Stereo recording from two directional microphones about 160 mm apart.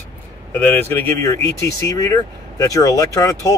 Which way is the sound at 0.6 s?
15° left (ahead or behind).